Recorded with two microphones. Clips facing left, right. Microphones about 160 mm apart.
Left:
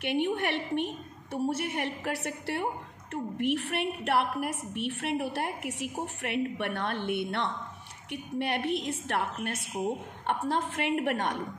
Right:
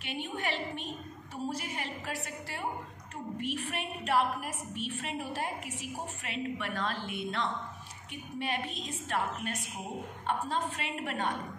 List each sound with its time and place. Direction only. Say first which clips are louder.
0.0 s a woman's voice: left 8 dB; 65° left (ahead or behind)
10.8 s a woman's voice: left 7 dB; 65° left (ahead or behind)